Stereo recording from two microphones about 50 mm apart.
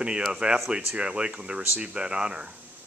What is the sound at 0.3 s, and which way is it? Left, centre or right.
Speech, centre.